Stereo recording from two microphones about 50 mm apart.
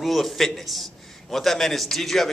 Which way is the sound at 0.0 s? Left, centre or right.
Centre.